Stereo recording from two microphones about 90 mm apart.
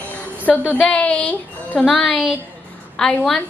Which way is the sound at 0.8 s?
15° left (ahead or behind).